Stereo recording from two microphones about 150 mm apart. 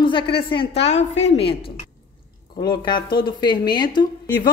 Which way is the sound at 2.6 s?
30° left (ahead or behind).